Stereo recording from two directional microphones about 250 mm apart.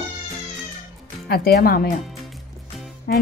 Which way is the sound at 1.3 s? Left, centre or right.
Left.